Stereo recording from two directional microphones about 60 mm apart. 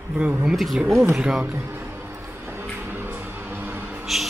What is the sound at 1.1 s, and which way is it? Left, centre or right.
Speech, centre.